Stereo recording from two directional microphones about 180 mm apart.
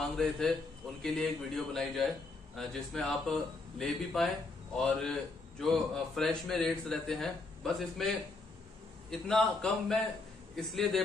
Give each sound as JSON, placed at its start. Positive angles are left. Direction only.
{"t": 0.0, "sound": "a man's voice", "side_deg": 5}
{"t": 9.1, "sound": "a man's voice", "side_deg": 0}